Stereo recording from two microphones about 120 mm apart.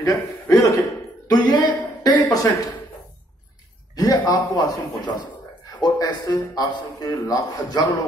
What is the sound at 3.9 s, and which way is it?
A man's voice, 30° left (ahead or behind).